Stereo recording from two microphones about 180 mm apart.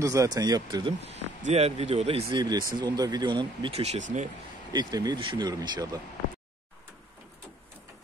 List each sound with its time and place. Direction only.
0.0 s speech: 20° right (ahead or behind)
1.0 s speech: 35° right (ahead or behind)
2.4 s speech: 25° right (ahead or behind); by 4.3 s 40° right (ahead or behind)
4.7 s speech: 20° right (ahead or behind)